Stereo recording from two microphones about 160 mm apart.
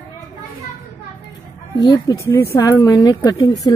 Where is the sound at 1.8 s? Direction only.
20° left (ahead or behind).